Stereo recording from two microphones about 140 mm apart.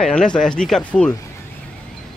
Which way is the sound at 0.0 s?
5° left (ahead or behind).